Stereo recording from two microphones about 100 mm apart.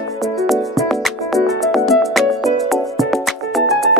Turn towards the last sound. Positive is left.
turn(degrees=0)  # may be behind; listen again after turning